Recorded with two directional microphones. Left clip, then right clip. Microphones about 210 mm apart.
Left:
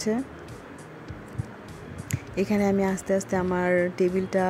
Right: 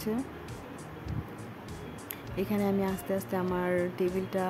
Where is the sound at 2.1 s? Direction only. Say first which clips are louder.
Left 7 dB; 20° left (ahead or behind).